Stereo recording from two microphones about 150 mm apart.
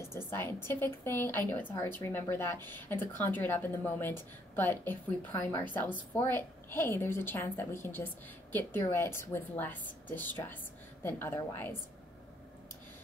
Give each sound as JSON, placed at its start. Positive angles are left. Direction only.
{"t": 0.0, "sound": "a woman's voice", "side_deg": 15}